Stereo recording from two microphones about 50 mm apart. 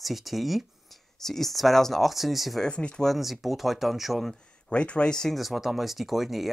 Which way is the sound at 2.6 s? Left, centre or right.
Left.